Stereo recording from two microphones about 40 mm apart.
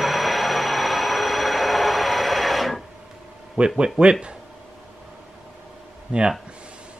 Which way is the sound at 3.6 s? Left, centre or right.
Right.